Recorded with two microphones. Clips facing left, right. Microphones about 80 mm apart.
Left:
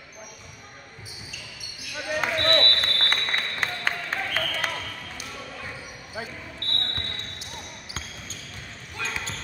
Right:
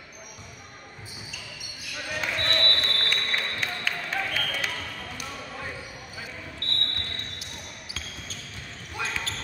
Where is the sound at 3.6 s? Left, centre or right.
Left.